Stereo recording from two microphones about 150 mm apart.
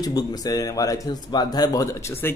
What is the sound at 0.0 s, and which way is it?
Speech, 25° left (ahead or behind).